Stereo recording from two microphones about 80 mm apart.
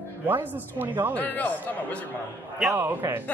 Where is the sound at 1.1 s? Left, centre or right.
Centre.